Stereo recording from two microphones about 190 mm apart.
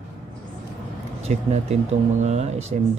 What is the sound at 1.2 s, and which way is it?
Speech, 35° right (ahead or behind).